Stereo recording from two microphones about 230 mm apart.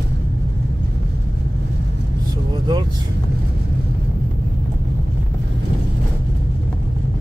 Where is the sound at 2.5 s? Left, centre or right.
Centre.